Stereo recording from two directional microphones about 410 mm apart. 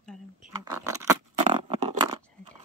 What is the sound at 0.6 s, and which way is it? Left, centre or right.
Patter, centre.